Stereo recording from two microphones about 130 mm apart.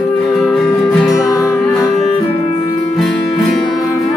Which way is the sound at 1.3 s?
25° left (ahead or behind).